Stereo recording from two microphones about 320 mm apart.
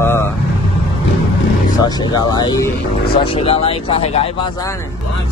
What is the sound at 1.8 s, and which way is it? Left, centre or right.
Speech, centre.